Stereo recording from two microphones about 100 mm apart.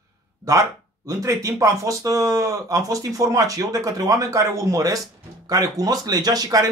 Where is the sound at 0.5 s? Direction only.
35° right (ahead or behind).